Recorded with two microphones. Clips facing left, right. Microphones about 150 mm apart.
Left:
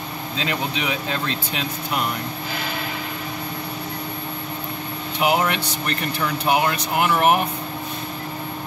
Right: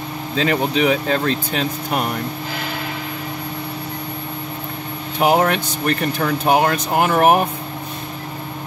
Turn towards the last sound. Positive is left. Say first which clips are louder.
# right 4 dB
turn(degrees=-45)  # may be behind; listen again after turning